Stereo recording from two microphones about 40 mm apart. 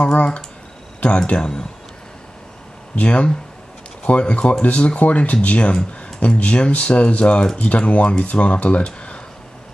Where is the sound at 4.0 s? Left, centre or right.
Left.